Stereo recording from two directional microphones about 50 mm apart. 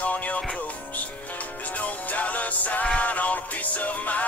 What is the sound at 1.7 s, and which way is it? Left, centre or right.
Music, left.